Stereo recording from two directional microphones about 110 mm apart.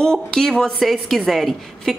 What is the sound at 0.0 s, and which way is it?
A woman's voice, 5° left (ahead or behind).